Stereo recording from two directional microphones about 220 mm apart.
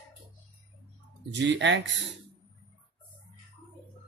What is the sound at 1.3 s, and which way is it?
Speech, 55° right (ahead or behind).